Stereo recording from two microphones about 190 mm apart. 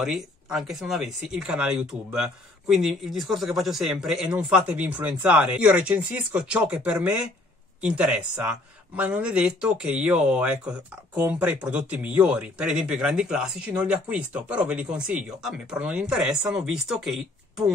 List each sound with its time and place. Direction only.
0.0 s speech: centre (ahead or behind)